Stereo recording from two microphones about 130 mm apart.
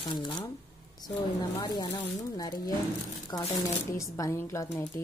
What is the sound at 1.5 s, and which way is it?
A woman's voice, 30° left (ahead or behind).